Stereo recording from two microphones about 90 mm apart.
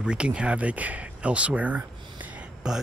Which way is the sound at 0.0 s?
10° right (ahead or behind).